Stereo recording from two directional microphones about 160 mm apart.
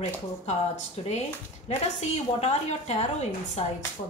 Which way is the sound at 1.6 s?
40° left (ahead or behind).